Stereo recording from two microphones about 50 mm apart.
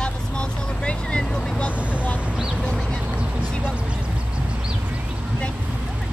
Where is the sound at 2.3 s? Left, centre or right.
Centre.